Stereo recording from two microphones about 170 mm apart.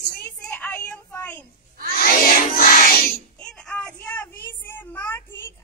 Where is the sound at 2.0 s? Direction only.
55° left (ahead or behind).